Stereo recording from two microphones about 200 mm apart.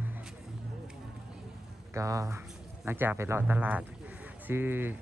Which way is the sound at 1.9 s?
15° right (ahead or behind).